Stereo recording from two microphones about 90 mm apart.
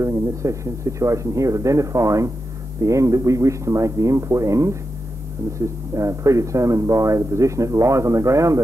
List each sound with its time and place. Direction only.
0.0 s speech: 35° right (ahead or behind)
5.9 s speech: 35° right (ahead or behind)